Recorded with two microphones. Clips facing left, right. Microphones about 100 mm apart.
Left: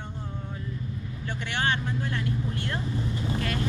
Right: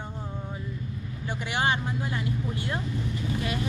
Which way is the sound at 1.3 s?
10° right (ahead or behind).